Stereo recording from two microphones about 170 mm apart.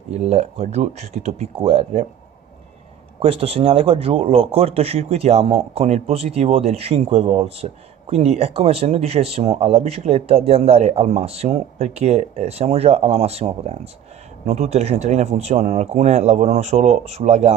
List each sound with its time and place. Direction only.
0.1 s speech: 40° right (ahead or behind)
3.2 s speech: 35° right (ahead or behind)